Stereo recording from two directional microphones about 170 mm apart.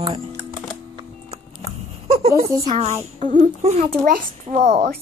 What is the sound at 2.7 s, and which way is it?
A woman's voice, 40° right (ahead or behind).